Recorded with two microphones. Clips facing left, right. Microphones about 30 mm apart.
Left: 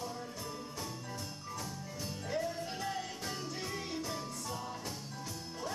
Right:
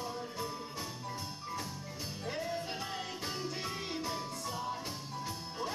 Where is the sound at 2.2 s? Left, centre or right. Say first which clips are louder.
Even; right.